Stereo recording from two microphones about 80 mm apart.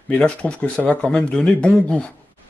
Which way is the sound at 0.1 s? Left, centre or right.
Centre.